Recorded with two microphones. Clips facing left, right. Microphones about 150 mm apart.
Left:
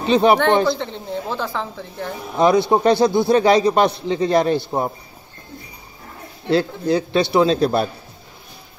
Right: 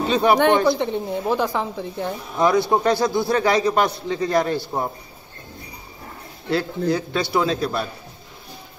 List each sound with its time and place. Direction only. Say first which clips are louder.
0.0 s a man's voice: left 3 dB; 20° left (ahead or behind)
0.7 s a woman's voice: right 2 dB; 15° right (ahead or behind)
2.3 s a man's voice: left 3 dB; 20° left (ahead or behind)
6.5 s a man's voice: left 3 dB; 25° left (ahead or behind)